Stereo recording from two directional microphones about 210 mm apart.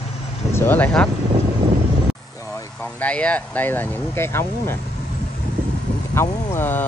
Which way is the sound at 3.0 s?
5° left (ahead or behind).